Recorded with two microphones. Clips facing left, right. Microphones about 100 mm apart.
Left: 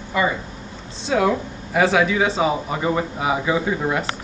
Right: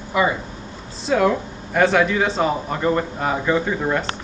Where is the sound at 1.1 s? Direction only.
Centre (ahead or behind).